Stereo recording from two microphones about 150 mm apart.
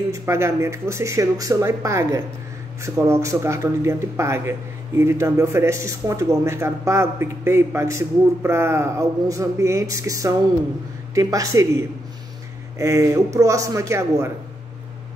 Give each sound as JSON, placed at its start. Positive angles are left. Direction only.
{"t": 0.1, "sound": "a man's voice", "side_deg": -15}